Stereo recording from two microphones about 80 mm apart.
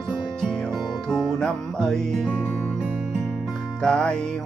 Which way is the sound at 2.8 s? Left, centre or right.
Centre.